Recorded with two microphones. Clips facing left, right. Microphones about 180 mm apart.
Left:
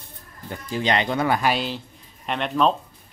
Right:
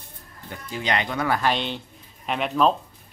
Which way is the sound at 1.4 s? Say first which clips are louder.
Left 1 dB; 5° left (ahead or behind).